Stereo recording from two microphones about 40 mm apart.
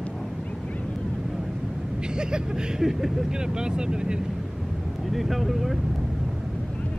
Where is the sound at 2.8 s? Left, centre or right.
Centre.